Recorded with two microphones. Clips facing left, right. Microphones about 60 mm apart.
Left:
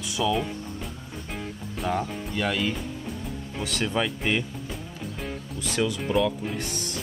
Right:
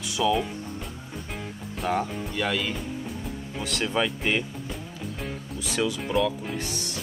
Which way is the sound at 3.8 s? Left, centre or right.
Centre.